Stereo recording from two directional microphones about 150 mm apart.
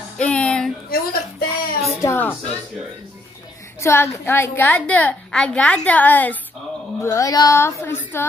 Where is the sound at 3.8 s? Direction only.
20° left (ahead or behind).